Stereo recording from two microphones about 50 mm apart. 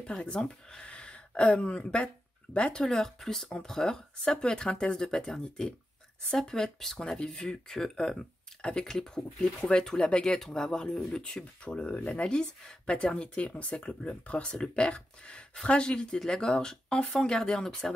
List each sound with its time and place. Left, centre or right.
0.0 s speech: centre
9.4 s speech: centre